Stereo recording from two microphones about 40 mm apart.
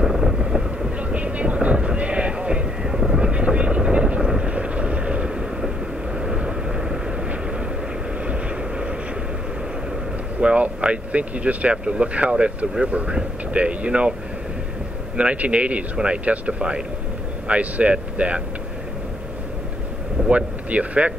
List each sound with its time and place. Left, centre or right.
0.0 s vehicle: centre
1.1 s music: right
4.4 s vehicle: right
8.3 s vehicle: right
10.4 s speech: right
15.1 s speech: right
20.2 s a sound: right